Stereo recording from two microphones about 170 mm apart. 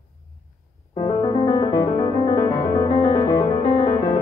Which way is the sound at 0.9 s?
30° left (ahead or behind).